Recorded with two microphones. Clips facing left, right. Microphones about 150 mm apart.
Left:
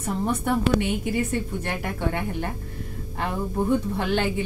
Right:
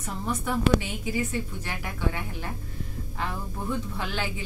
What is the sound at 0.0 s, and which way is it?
A woman's voice, 60° left (ahead or behind).